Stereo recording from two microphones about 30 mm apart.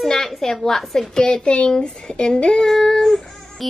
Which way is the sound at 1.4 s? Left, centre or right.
Left.